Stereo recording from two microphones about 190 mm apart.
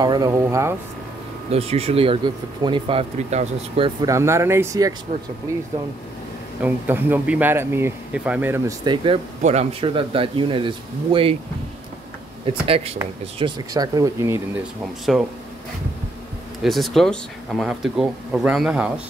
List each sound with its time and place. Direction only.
0.0 s speech: 20° right (ahead or behind)
1.5 s speech: 30° right (ahead or behind)
12.4 s speech: 30° right (ahead or behind)
13.4 s speech: 20° right (ahead or behind)
15.1 s speech: centre (ahead or behind)
16.6 s speech: centre (ahead or behind)